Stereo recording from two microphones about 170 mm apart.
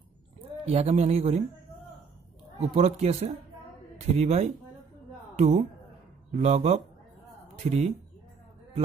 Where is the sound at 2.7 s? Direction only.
40° right (ahead or behind).